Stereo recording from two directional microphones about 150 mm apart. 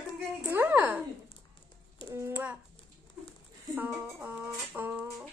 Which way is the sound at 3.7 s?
10° right (ahead or behind).